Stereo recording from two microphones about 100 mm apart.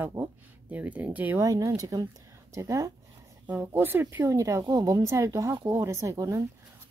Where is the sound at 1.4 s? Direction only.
35° right (ahead or behind).